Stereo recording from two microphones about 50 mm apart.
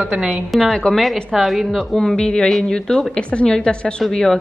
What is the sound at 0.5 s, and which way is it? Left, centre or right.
A woman's voice, centre.